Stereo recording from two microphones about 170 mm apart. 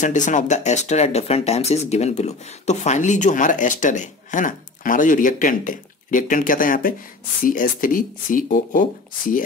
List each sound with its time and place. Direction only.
0.0 s speech: 45° left (ahead or behind)